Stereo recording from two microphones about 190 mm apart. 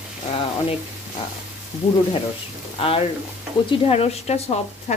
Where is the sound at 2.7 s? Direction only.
30° left (ahead or behind).